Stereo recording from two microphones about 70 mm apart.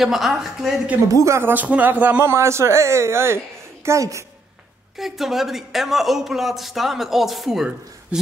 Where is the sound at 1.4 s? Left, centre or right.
Right.